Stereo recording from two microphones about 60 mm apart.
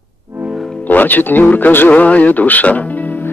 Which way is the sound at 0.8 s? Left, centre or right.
Left.